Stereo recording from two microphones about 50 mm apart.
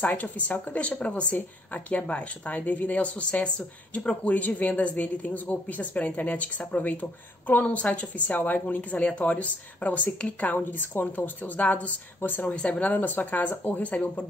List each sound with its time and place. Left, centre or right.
0.1 s a woman's voice: left
12.5 s a woman's voice: left